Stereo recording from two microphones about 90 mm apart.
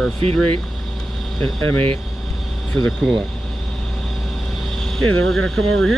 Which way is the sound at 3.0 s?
5° right (ahead or behind).